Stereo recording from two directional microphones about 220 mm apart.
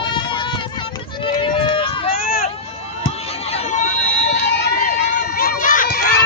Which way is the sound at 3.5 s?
35° left (ahead or behind).